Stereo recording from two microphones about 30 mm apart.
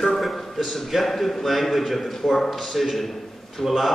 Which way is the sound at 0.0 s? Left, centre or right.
Centre.